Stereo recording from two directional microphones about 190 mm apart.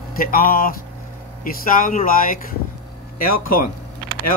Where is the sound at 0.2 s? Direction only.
50° left (ahead or behind).